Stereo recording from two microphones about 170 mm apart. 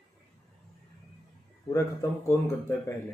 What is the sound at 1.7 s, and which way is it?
Speech, 15° left (ahead or behind).